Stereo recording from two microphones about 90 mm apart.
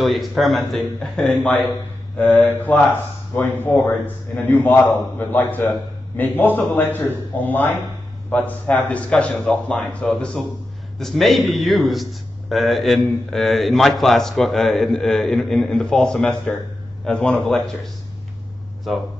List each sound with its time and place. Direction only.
0.0 s a man's voice: centre (ahead or behind)